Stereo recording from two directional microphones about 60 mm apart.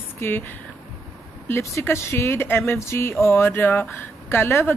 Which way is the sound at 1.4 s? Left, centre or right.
Left.